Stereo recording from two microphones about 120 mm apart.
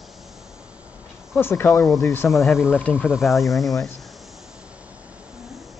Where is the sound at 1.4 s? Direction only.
25° left (ahead or behind).